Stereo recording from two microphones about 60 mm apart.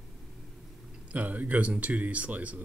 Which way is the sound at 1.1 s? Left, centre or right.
Right.